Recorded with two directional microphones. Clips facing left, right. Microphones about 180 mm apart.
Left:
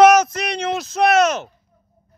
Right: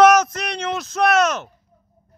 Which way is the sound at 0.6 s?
35° left (ahead or behind).